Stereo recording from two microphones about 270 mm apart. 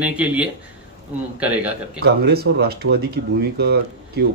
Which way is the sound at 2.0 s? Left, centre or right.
Right.